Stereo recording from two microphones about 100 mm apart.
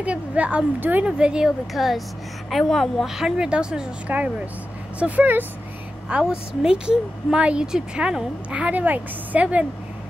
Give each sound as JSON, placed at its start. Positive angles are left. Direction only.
{"t": 0.0, "sound": "a woman's voice", "side_deg": -15}